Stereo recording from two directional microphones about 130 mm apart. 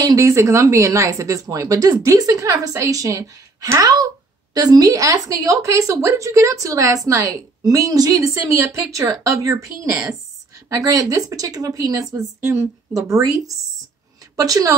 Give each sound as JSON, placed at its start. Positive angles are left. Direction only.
{"t": 0.0, "sound": "a woman's voice", "side_deg": -25}
{"t": 10.7, "sound": "a woman's voice", "side_deg": -25}